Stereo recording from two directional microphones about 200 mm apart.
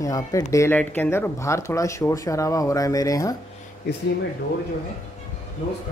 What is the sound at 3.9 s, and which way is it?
Speech, 55° left (ahead or behind).